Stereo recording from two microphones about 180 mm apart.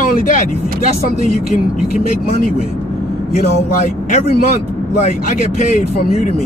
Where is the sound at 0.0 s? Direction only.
50° left (ahead or behind).